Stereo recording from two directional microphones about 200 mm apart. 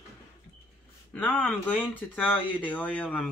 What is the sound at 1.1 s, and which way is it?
Speech, 5° left (ahead or behind).